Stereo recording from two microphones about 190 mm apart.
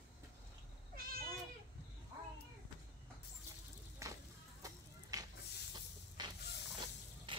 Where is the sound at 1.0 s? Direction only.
50° right (ahead or behind).